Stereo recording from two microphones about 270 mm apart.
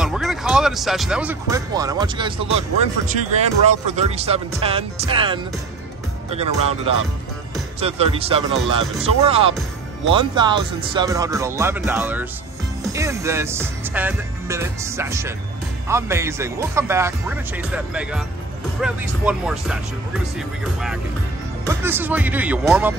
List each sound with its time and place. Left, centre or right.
0.0 s speech: centre